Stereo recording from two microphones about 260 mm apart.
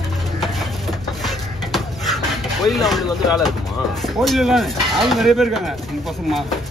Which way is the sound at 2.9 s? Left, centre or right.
Centre.